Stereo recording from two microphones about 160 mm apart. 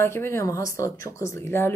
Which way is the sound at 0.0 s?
15° left (ahead or behind).